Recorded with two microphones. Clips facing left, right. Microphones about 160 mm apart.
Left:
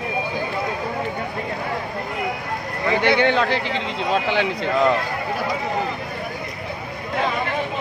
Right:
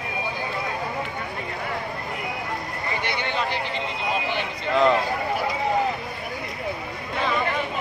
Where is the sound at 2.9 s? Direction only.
90° left.